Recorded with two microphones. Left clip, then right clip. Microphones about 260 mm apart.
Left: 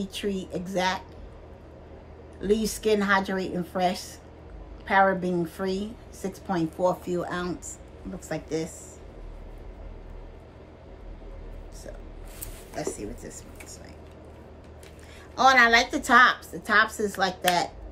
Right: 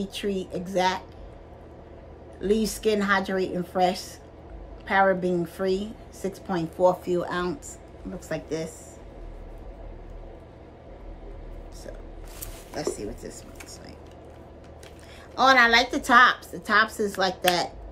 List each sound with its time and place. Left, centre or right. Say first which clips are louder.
0.0 s a woman's voice: right 2 dB; centre
2.4 s a woman's voice: right 1 dB; centre
12.7 s speech: right 2 dB; centre
15.3 s a woman's voice: even; centre